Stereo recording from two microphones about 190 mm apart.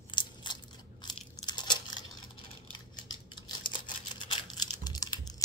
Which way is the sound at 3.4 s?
25° left (ahead or behind).